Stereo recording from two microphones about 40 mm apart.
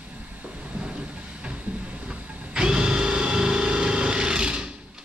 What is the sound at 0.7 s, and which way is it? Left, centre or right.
Train, right.